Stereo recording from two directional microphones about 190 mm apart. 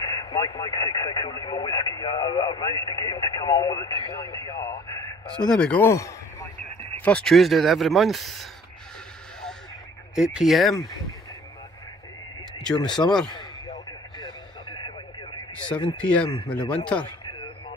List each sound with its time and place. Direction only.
0.0 s speech: 25° left (ahead or behind)
5.2 s speech: 5° left (ahead or behind)
10.1 s speech: centre (ahead or behind)
12.7 s speech: 20° left (ahead or behind)
13.3 s radio: 25° left (ahead or behind)
16.3 s speech: 25° left (ahead or behind)